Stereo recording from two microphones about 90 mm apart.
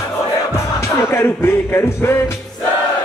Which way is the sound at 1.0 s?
30° left (ahead or behind).